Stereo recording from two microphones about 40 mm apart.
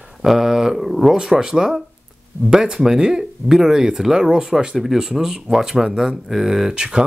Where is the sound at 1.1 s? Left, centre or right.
Centre.